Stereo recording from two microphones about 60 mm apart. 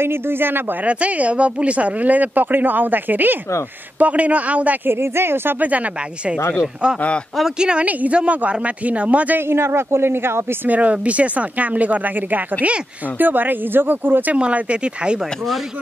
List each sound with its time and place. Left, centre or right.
0.0 s speech: right
0.8 s speech: right
4.8 s speech: right
5.6 s a man's voice: right
9.5 s speech: right
10.7 s speech: right
14.3 s speech: centre